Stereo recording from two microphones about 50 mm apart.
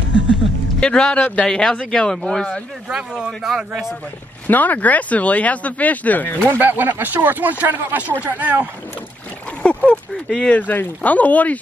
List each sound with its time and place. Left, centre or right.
0.7 s speech: centre
3.0 s speech: centre
3.3 s a man's voice: centre
4.5 s speech: left
6.5 s speech: right
9.6 s a sound: left
10.2 s speech: centre
10.5 s speech: left